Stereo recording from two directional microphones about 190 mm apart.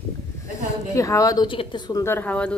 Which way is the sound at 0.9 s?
15° left (ahead or behind).